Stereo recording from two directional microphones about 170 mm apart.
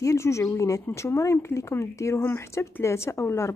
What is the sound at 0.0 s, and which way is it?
Speech, 15° left (ahead or behind).